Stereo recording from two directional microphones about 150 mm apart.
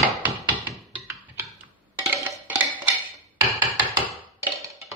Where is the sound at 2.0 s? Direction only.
10° right (ahead or behind).